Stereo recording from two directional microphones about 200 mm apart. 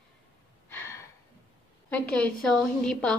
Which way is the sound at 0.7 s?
10° left (ahead or behind).